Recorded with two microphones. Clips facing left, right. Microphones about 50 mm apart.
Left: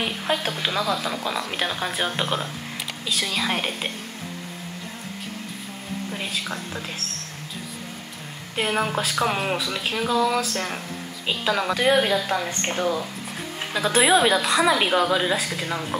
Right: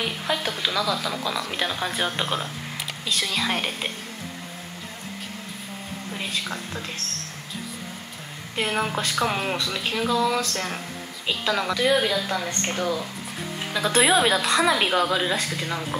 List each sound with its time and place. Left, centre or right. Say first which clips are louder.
0.6 s speech: even; left
0.8 s speech: left 1 dB; centre
6.1 s speech: right 2 dB; centre
8.5 s a woman's voice: left 2 dB; centre
11.7 s speech: left 2 dB; left
13.7 s speech: left 1 dB; centre